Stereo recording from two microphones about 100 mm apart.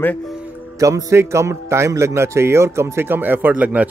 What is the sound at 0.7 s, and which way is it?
A man's voice, 35° right (ahead or behind).